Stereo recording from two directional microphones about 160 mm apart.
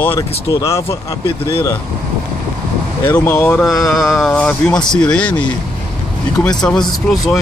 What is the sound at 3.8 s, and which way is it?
Speech, centre (ahead or behind).